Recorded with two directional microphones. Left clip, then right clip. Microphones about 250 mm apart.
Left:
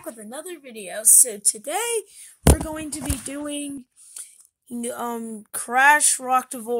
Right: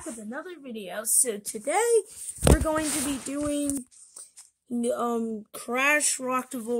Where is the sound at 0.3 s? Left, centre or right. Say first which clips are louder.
Left 1 dB; left.